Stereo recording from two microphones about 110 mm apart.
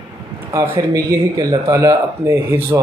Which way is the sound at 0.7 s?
35° right (ahead or behind).